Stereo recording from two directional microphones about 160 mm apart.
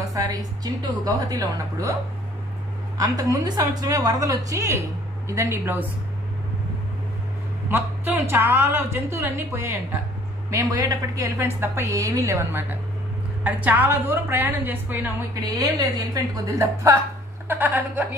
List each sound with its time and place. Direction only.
0.1 s a sound: 25° right (ahead or behind)
1.0 s a woman's voice: 20° right (ahead or behind)
3.0 s a woman's voice: 20° right (ahead or behind)
7.7 s a woman's voice: 10° right (ahead or behind)